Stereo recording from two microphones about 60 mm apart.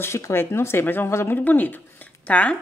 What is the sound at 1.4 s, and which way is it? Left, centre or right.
Speech, left.